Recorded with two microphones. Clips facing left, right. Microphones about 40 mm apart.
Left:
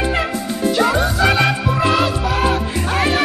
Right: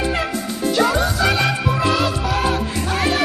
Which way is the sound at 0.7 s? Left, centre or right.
Centre.